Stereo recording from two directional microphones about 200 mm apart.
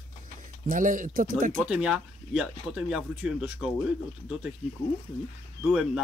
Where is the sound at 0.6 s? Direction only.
40° right (ahead or behind).